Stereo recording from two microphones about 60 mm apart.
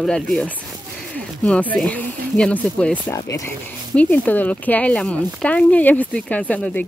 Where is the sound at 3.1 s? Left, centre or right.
Left.